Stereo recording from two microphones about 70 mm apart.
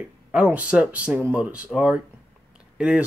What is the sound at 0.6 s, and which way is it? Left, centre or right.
Speech, centre.